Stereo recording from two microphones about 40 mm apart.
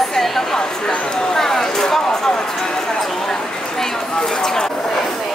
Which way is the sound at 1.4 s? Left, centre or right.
Centre.